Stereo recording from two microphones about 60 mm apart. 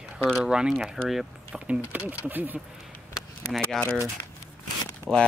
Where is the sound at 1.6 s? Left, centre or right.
Right.